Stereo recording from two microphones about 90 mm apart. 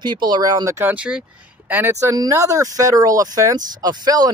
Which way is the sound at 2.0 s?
40° right (ahead or behind).